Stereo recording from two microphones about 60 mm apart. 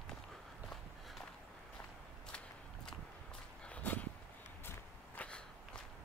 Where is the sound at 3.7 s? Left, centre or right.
Left.